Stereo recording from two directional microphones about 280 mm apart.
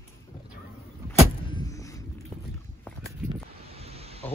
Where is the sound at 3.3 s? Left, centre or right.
Right.